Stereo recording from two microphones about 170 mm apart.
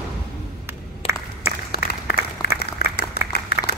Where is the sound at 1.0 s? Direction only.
35° left (ahead or behind).